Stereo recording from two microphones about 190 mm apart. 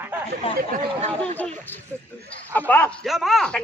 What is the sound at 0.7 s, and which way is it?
Speech, 45° right (ahead or behind).